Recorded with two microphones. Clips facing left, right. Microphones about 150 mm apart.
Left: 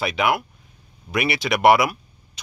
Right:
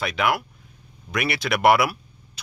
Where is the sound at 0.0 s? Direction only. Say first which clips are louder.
Left 2 dB; centre (ahead or behind).